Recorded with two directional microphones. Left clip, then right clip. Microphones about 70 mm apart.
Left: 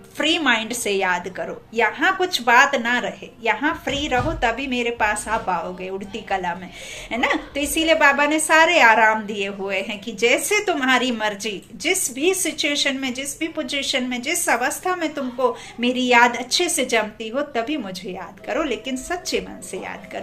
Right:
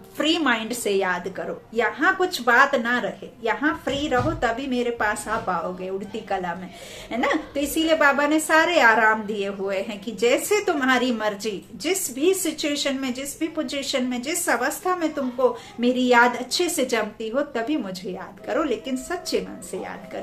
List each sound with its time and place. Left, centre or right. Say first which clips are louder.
0.2 s a woman's voice: left 3 dB; right
7.6 s a woman's voice: left 3 dB; right
13.9 s a woman's voice: left 2 dB; right